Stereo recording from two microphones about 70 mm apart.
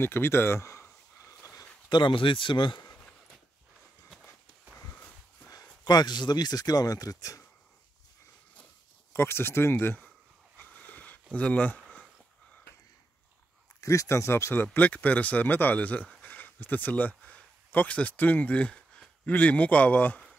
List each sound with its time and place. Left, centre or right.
0.0 s a sound: left
1.9 s speech: left
4.9 s a sound: left
5.5 s speech: left
9.1 s speech: left
10.6 s a sound: left
11.3 s speech: centre
13.7 s speech: left
14.5 s speech: left